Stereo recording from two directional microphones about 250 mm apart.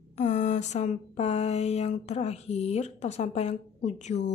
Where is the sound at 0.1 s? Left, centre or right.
Left.